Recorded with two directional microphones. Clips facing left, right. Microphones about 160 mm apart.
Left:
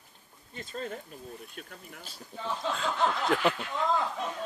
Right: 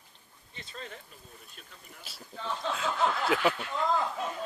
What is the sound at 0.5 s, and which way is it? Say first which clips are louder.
Speech: left 7 dB; 45° left (ahead or behind).